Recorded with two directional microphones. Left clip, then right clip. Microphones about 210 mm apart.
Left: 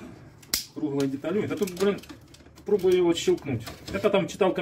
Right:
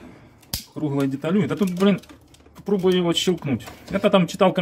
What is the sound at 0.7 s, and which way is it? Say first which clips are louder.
Speech: right 6 dB; 60° right (ahead or behind).